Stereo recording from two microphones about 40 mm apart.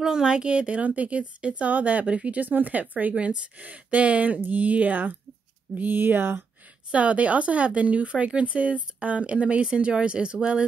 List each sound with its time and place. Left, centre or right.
0.0 s speech: centre
0.7 s speech: right
5.8 s speech: right
6.9 s speech: right